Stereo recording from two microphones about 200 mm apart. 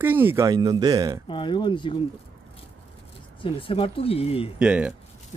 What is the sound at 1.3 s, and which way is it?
Speech, 25° left (ahead or behind).